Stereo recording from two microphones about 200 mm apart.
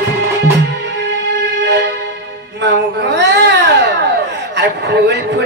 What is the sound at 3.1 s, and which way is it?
Baby cry, 60° right (ahead or behind).